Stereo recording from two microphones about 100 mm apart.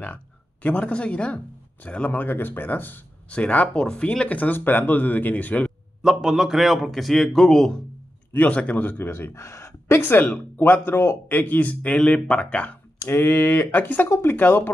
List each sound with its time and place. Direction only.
0.0 s speech: 15° left (ahead or behind)
6.0 s a man's voice: 5° right (ahead or behind); by 14.7 s 20° left (ahead or behind)